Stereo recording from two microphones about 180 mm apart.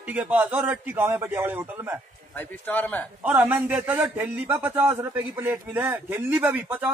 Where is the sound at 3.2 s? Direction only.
10° right (ahead or behind).